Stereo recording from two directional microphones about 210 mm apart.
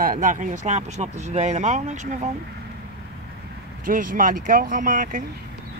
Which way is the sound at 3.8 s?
40° right (ahead or behind).